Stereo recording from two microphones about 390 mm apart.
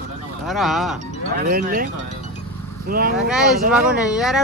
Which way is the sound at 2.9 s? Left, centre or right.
Right.